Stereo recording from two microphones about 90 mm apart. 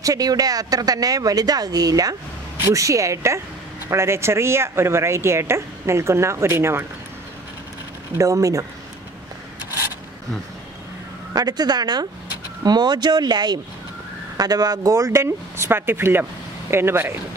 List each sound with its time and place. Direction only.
0.0 s speech: 40° right (ahead or behind)
8.2 s speech: 40° right (ahead or behind)
11.3 s speech: 50° right (ahead or behind); by 17.2 s 25° right (ahead or behind)